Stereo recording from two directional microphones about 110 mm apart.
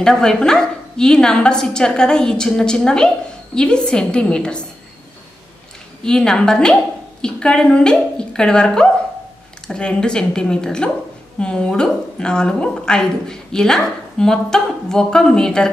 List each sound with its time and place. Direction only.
0.0 s a woman's voice: 5° left (ahead or behind)
6.0 s a woman's voice: 5° left (ahead or behind)